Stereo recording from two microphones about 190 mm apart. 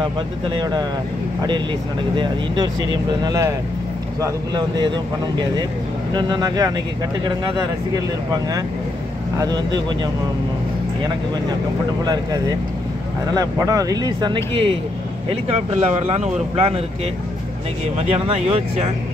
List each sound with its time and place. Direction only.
0.0 s speech: 25° right (ahead or behind)
2.1 s speech: 25° right (ahead or behind)
12.0 s speech: 20° right (ahead or behind)
17.9 s speech: 30° right (ahead or behind)